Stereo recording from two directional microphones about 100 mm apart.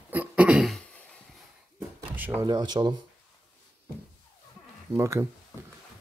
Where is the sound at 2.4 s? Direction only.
45° right (ahead or behind).